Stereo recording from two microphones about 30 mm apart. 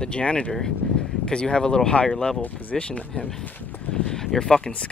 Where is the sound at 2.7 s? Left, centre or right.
Left.